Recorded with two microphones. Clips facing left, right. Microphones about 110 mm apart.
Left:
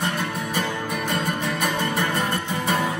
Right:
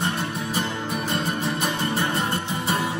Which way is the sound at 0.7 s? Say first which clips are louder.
Left 1 dB; 60° left (ahead or behind).